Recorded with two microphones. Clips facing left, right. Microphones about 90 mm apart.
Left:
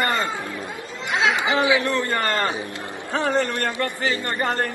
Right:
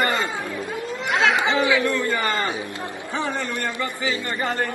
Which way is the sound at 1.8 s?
60° left (ahead or behind).